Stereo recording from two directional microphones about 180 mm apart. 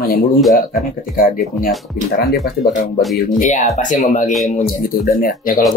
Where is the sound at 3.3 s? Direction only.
40° left (ahead or behind).